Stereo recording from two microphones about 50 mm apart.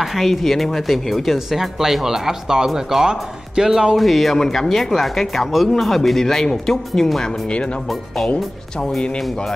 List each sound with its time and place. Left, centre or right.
0.0 s speech: centre
4.0 s speech: centre
7.4 s speech: left
8.7 s speech: centre